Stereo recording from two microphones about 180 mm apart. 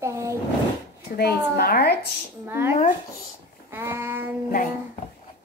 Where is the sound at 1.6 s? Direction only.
60° left (ahead or behind).